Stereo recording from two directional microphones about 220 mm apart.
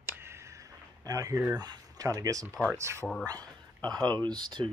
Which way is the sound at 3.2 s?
15° right (ahead or behind).